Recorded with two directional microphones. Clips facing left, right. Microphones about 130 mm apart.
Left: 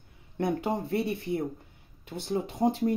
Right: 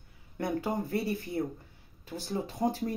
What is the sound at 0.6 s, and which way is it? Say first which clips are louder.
Speech: left 2 dB; 25° left (ahead or behind).